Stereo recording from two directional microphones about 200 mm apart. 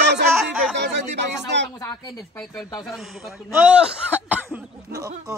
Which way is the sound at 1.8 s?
20° left (ahead or behind).